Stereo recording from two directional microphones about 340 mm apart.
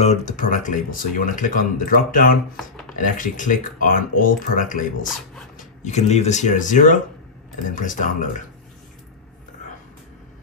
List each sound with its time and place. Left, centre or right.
0.0 s speech: centre